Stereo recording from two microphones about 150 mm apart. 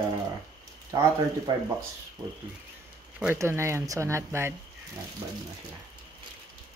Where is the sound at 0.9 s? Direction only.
25° right (ahead or behind).